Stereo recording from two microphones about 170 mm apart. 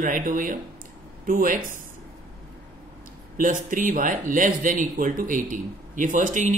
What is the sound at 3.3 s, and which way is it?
A man's voice, 50° right (ahead or behind).